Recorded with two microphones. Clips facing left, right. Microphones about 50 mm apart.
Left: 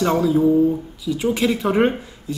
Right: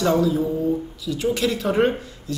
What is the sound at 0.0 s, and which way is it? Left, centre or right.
A woman's voice, centre.